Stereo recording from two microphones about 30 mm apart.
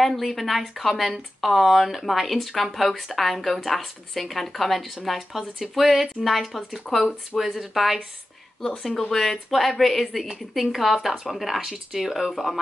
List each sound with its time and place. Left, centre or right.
0.0 s speech: centre
8.5 s speech: centre
11.6 s speech: centre